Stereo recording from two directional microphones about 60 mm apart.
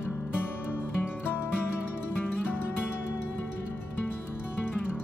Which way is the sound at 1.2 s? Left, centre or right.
Left.